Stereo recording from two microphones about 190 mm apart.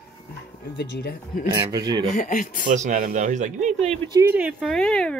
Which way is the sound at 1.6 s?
20° right (ahead or behind).